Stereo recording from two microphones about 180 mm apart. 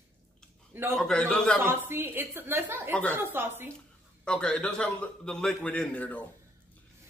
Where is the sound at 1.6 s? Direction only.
10° right (ahead or behind).